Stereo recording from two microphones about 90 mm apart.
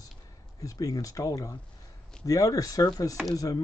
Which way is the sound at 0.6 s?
40° left (ahead or behind).